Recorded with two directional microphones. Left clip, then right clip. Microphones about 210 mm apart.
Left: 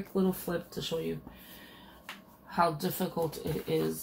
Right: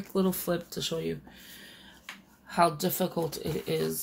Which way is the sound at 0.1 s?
55° right (ahead or behind).